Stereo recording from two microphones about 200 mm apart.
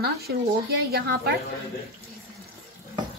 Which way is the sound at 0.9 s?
55° right (ahead or behind).